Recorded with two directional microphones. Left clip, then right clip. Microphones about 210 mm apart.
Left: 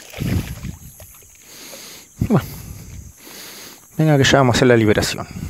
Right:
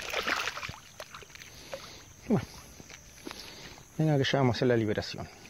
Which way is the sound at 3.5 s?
55° left (ahead or behind).